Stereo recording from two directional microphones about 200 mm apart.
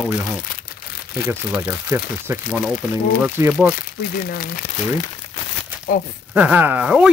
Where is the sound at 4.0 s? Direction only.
50° left (ahead or behind).